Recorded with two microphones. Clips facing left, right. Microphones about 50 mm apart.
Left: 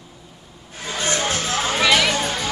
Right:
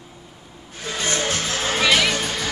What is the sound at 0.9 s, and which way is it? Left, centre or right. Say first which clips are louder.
Speech: left 1 dB; left.